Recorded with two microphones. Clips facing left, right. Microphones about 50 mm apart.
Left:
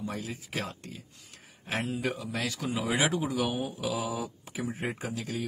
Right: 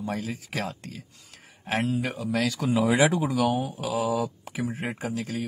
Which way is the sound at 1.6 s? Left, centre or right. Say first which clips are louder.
Right 5 dB; right.